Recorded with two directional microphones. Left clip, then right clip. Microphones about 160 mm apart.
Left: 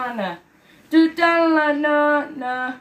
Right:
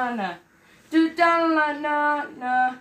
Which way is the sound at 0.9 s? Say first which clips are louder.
Left 3 dB; 45° left (ahead or behind).